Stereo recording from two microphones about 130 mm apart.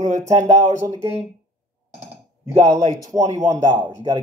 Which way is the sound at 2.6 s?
30° right (ahead or behind).